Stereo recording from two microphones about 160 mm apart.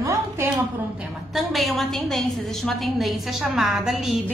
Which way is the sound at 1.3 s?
Centre (ahead or behind).